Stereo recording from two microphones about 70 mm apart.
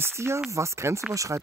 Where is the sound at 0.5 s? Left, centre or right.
Right.